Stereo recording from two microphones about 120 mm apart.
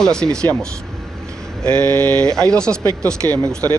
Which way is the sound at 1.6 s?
15° left (ahead or behind).